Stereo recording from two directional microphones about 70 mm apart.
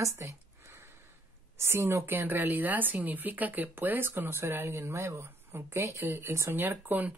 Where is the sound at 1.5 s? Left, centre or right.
Right.